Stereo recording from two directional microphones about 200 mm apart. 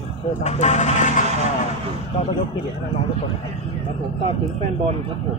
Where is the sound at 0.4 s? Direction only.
35° left (ahead or behind).